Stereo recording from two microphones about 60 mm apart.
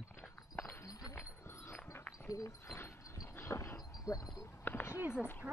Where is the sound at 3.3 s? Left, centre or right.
Left.